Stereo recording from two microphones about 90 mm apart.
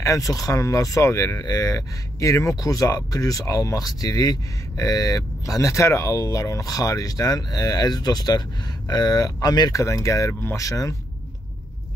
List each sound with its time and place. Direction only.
0.0 s speech: 40° left (ahead or behind)